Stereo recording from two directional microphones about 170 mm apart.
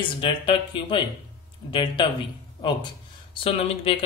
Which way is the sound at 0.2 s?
30° left (ahead or behind).